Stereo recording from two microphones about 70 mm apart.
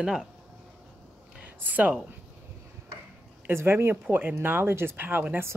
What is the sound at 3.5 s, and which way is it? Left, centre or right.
Speech, right.